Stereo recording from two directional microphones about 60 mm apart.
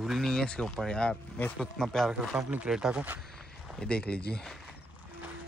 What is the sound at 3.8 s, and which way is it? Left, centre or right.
Speech, centre.